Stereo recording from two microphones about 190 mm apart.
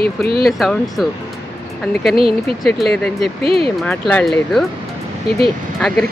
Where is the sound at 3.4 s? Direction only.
30° right (ahead or behind).